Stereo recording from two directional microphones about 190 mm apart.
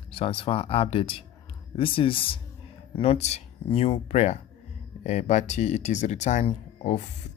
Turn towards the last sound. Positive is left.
turn(degrees=35)  # may be behind; listen again after turning